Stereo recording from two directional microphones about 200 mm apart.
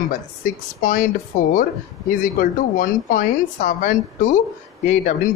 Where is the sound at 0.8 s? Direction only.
40° left (ahead or behind).